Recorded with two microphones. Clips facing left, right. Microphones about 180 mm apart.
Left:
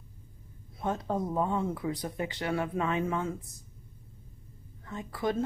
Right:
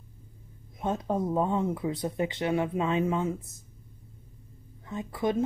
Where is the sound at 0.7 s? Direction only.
20° right (ahead or behind).